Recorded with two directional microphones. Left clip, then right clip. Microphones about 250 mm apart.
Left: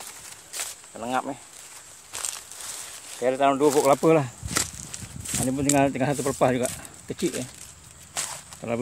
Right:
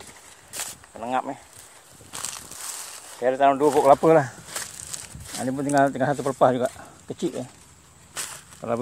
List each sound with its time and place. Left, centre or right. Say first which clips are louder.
0.9 s speech: right 1 dB; centre
2.1 s a sound: left 1 dB; right
3.2 s speech: right 2 dB; centre
5.4 s speech: right 2 dB; centre
8.1 s walk: left 2 dB; centre